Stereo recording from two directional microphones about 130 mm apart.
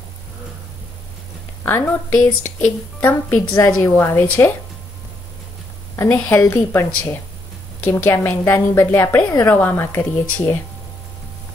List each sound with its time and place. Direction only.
1.9 s a woman's voice: 15° left (ahead or behind)
5.9 s a woman's voice: 15° left (ahead or behind)